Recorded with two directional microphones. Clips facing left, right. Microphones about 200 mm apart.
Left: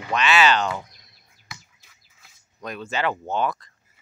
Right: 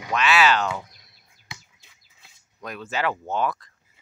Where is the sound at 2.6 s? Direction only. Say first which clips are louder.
Left 1 dB; 5° right (ahead or behind).